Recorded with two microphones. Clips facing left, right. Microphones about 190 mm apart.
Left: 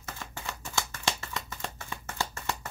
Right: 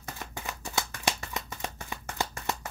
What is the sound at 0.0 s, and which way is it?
Shuffling cards, 15° right (ahead or behind).